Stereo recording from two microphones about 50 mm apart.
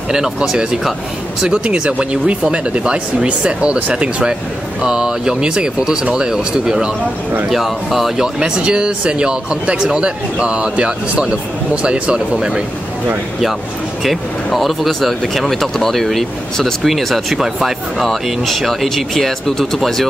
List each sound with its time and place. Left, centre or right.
0.1 s speech: centre
8.4 s speech: centre
14.0 s speech: centre